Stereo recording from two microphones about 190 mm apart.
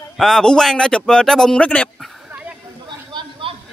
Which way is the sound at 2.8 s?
25° right (ahead or behind).